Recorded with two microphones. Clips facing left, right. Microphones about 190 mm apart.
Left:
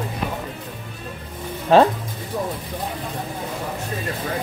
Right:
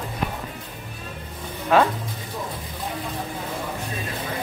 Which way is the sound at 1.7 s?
30° left (ahead or behind).